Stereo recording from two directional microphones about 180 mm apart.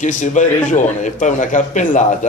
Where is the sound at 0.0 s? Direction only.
45° left (ahead or behind).